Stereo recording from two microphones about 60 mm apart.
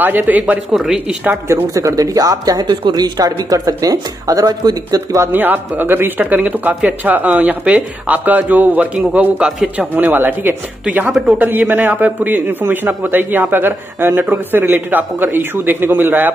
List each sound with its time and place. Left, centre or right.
0.0 s speech: right
1.7 s speech: right
5.3 s a man's voice: right
11.1 s a man's voice: centre
11.4 s a man's voice: right